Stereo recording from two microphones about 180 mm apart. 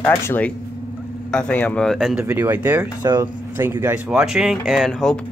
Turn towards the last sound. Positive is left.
turn(degrees=0)  # may be behind; listen again after turning